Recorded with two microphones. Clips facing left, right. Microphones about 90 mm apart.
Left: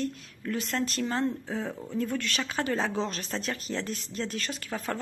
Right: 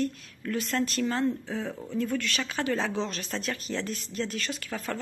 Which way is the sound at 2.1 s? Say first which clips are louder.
Even; 30° left (ahead or behind).